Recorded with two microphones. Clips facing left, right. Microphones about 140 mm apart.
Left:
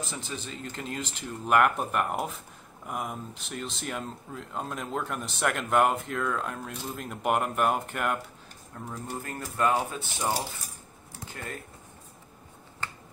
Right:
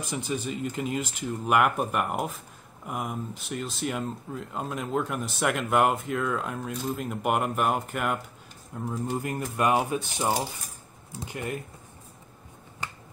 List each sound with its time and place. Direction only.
0.0 s speech: 15° right (ahead or behind)
8.7 s speech: 15° right (ahead or behind)
12.8 s finger snapping: 15° right (ahead or behind)